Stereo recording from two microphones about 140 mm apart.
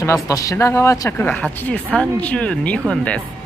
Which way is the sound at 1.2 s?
15° left (ahead or behind).